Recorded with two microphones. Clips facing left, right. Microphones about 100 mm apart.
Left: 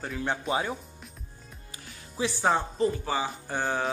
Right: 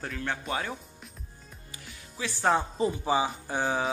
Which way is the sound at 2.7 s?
15° right (ahead or behind).